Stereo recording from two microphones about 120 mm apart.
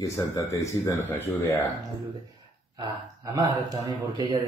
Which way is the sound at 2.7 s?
30° right (ahead or behind).